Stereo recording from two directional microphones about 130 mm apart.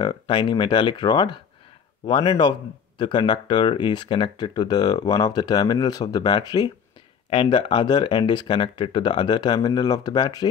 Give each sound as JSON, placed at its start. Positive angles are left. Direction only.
{"t": 0.0, "sound": "speech", "side_deg": 35}